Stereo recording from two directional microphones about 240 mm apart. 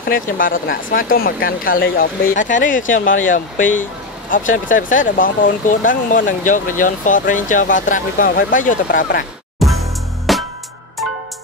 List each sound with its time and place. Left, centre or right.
0.0 s speech: left
10.3 s music: centre